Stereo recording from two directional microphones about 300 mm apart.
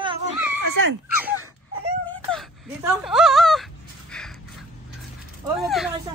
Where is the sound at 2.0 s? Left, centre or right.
Centre.